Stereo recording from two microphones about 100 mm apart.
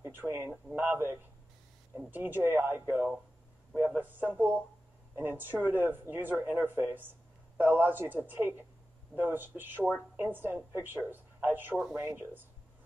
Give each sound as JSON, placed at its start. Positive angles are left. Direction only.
{"t": 0.0, "sound": "speech", "side_deg": -25}